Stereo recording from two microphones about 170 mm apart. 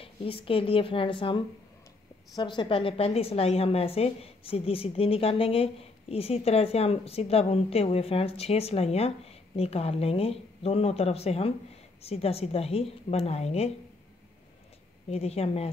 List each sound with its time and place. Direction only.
0.0 s a woman's voice: 30° left (ahead or behind)
15.0 s a woman's voice: 35° left (ahead or behind)